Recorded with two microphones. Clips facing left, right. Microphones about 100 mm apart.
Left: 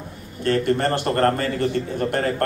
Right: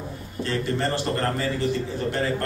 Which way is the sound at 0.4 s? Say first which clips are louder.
Left 6 dB; 55° left (ahead or behind).